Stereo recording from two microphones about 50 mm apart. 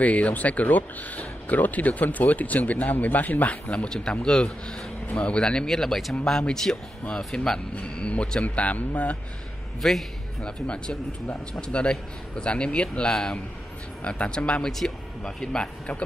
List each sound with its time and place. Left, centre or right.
0.0 s speech: left
3.6 s speech: left
9.8 s speech: centre
10.4 s speech: centre